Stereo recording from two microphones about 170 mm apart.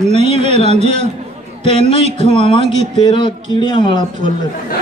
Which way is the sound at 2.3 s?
30° left (ahead or behind).